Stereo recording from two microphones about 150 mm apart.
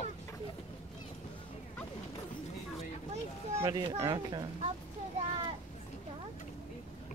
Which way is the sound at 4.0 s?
30° right (ahead or behind).